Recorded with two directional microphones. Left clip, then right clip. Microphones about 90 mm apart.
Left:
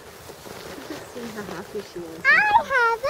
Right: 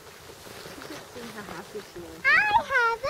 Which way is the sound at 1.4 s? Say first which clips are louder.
Left 6 dB; 20° right (ahead or behind).